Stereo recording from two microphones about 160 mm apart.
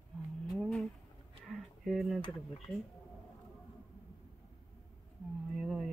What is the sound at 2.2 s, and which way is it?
Speech, 35° left (ahead or behind).